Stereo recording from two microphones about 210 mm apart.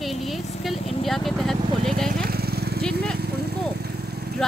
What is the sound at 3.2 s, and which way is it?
Vehicle, 50° right (ahead or behind).